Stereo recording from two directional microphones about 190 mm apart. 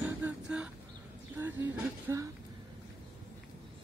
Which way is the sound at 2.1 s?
15° right (ahead or behind).